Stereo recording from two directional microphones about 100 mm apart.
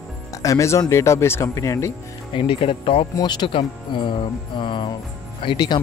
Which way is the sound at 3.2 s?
50° left (ahead or behind).